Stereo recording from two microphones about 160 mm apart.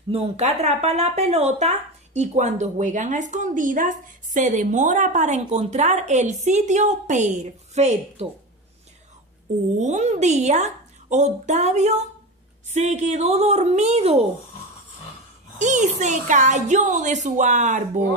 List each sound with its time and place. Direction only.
0.1 s speech: 40° right (ahead or behind)
9.8 s speech: 45° right (ahead or behind)
15.6 s speech: 50° right (ahead or behind)